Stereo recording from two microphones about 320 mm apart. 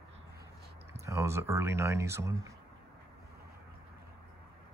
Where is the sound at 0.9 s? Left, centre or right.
Centre.